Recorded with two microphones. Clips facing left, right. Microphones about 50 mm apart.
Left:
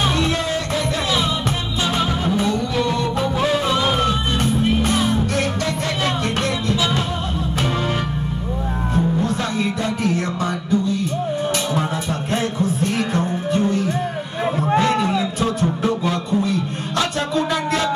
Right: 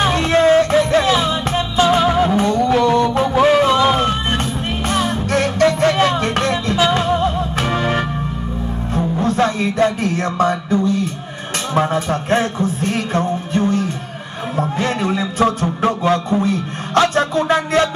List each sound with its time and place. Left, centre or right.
0.0 s music: right
9.2 s music: right
14.8 s a sound: right
15.4 s music: right